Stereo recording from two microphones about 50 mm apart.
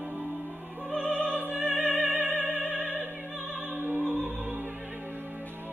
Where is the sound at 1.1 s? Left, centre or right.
Right.